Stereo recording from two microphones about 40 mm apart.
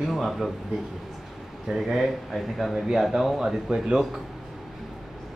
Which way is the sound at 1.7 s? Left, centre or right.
Centre.